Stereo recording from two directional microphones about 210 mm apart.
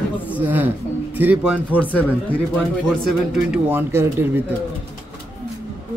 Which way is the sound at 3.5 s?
10° right (ahead or behind).